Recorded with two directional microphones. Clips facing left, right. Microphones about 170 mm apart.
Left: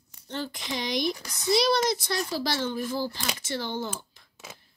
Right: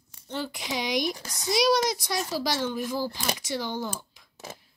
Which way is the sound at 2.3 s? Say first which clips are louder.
Right 2 dB; 15° right (ahead or behind).